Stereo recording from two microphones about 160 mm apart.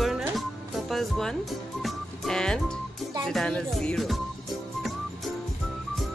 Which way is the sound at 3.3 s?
5° left (ahead or behind).